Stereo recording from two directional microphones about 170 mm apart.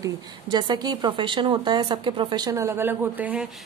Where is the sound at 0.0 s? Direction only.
25° right (ahead or behind).